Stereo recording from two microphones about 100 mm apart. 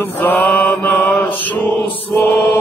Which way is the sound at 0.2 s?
15° left (ahead or behind).